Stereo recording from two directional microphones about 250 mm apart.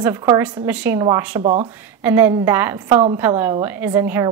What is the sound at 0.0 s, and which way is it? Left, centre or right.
A woman's voice, centre.